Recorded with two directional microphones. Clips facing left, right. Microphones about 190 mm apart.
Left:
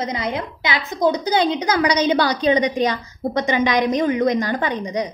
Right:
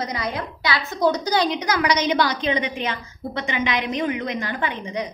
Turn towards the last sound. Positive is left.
turn(degrees=35)  # may be behind; listen again after turning